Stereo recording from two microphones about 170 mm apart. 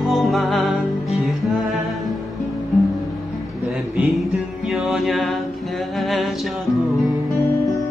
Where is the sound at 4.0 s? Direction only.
Centre (ahead or behind).